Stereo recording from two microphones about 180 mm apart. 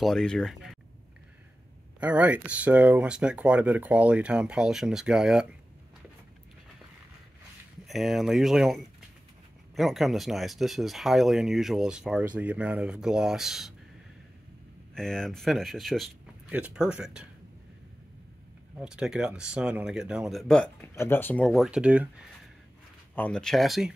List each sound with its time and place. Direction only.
0.0 s speech: 5° left (ahead or behind)
2.0 s speech: 5° right (ahead or behind)
7.8 s speech: centre (ahead or behind)
15.0 s speech: 5° left (ahead or behind)
18.8 s speech: 5° right (ahead or behind)
21.6 s speech: 5° right (ahead or behind)
23.1 s speech: 5° left (ahead or behind)